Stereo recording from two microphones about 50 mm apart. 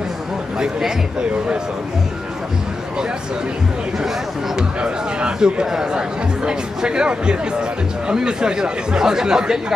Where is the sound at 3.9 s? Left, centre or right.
Centre.